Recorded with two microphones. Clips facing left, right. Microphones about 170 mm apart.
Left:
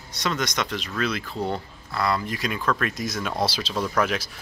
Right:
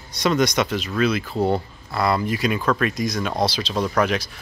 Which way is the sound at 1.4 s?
40° right (ahead or behind).